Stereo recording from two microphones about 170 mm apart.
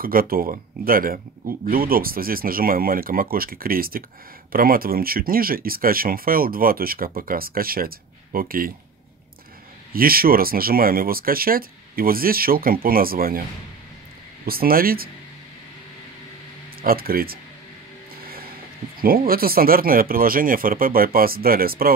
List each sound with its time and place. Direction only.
0.0 s speech: 60° right (ahead or behind)
9.9 s speech: 60° right (ahead or behind)
14.4 s speech: 60° right (ahead or behind)
16.8 s speech: 60° right (ahead or behind)
18.9 s speech: 60° right (ahead or behind)